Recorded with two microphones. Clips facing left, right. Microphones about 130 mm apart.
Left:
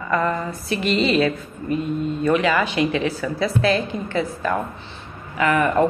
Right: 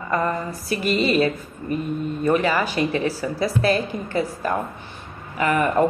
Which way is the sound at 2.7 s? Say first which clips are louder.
Left 1 dB; 35° right (ahead or behind).